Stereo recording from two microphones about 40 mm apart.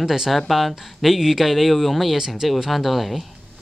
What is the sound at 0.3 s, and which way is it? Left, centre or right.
Speech, centre.